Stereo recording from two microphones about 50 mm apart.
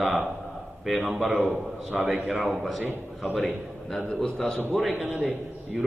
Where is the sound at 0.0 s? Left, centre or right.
Centre.